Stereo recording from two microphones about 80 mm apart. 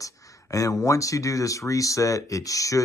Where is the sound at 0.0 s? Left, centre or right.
Left.